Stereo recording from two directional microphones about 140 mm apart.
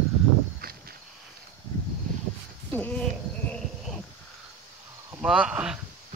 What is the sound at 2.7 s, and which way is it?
Sheep, 10° left (ahead or behind).